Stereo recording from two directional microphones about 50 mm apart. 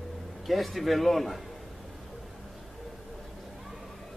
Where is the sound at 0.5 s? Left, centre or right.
Centre.